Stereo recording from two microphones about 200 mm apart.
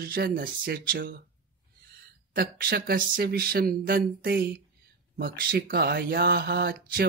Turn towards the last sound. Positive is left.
turn(degrees=-50)  # may be behind; listen again after turning